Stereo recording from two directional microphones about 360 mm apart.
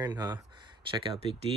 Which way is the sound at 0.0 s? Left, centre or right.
Centre.